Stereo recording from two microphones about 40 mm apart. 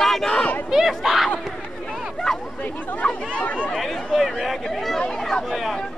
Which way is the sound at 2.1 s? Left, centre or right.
Centre.